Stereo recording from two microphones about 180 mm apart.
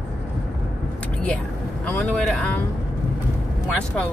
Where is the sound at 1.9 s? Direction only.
10° left (ahead or behind).